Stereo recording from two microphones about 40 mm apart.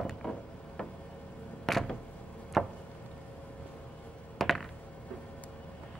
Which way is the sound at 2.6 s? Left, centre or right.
Centre.